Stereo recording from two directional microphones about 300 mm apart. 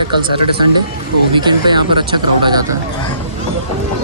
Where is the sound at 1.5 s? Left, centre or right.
Centre.